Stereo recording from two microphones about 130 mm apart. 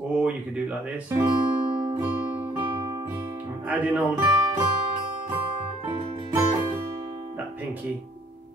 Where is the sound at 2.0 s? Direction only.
15° right (ahead or behind).